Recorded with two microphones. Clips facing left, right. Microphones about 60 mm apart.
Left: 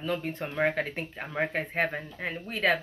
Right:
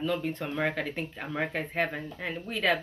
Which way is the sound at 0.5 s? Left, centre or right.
Left.